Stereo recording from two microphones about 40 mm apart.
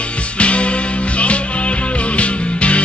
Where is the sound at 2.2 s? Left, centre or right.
Left.